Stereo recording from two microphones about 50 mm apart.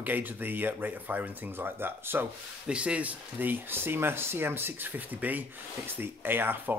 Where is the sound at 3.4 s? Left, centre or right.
Right.